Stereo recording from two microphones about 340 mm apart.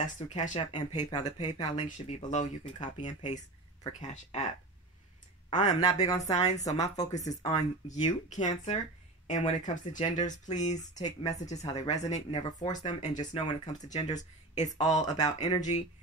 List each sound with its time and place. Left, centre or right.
0.0 s speech: left
5.5 s speech: left